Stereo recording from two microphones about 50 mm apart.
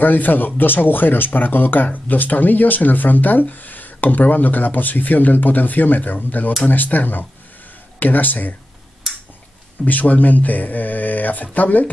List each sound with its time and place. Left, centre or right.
0.0 s speech: left
9.8 s speech: left